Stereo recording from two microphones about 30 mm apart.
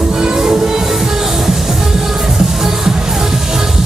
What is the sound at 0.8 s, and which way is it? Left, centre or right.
Music, centre.